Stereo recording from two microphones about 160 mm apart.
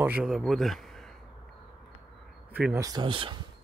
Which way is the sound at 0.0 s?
5° right (ahead or behind).